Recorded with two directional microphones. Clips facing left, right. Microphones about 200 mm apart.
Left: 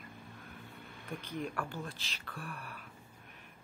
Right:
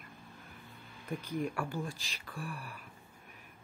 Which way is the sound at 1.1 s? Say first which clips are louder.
Right 3 dB; 10° right (ahead or behind).